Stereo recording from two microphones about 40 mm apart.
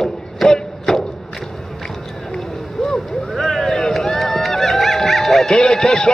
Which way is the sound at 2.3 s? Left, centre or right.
Centre.